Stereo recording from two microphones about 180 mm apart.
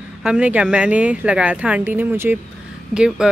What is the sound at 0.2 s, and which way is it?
Speech, 5° right (ahead or behind).